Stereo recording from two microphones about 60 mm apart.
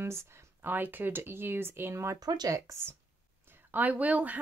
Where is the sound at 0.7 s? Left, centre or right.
Right.